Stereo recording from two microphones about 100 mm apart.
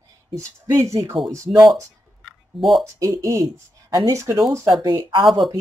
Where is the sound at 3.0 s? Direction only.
30° right (ahead or behind).